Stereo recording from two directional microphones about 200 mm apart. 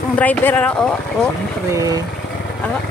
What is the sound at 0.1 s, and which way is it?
Speech, 10° left (ahead or behind).